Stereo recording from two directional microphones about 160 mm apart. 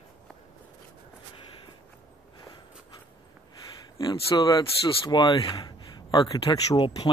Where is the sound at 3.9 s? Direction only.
25° left (ahead or behind).